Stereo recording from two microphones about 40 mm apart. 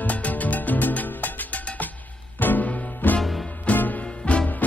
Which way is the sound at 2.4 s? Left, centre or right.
Left.